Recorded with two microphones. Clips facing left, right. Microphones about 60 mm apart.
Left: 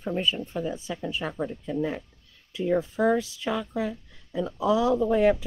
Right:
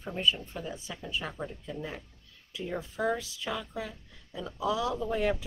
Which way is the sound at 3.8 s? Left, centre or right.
Left.